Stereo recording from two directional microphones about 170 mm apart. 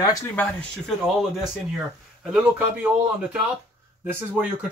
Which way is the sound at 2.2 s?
5° right (ahead or behind).